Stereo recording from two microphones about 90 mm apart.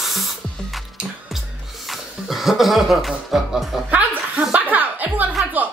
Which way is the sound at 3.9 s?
15° right (ahead or behind).